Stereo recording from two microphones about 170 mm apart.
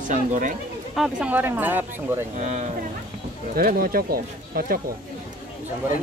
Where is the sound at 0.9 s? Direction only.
5° right (ahead or behind).